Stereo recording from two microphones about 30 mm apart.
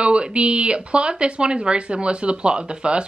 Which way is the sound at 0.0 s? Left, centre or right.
Right.